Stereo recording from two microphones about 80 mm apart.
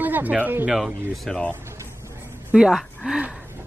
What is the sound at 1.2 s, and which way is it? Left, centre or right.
Speech, centre.